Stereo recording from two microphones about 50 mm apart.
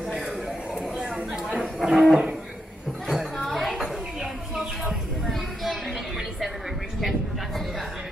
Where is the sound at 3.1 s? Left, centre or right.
Centre.